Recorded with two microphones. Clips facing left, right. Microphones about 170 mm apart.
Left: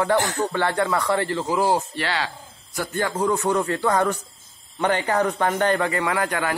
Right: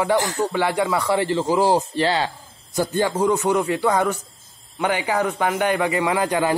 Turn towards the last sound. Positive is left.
turn(degrees=-20)  # may be behind; listen again after turning